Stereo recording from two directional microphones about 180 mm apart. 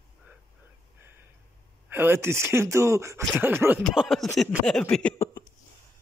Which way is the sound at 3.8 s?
Centre (ahead or behind).